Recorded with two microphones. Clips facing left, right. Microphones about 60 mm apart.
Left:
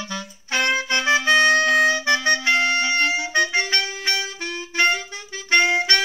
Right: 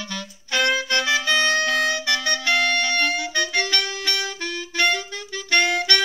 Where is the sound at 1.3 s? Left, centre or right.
Left.